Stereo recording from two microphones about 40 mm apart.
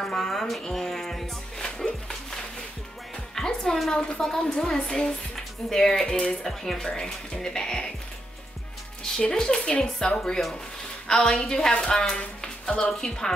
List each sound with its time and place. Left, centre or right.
0.0 s speech: centre
3.3 s music: centre
4.2 s speech: centre
9.2 s a woman's voice: centre